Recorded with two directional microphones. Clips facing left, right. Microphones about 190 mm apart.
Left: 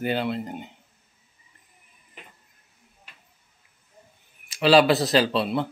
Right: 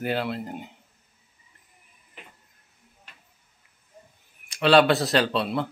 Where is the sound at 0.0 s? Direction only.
Centre (ahead or behind).